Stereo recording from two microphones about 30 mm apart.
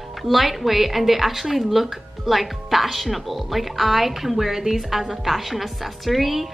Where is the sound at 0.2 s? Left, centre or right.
Centre.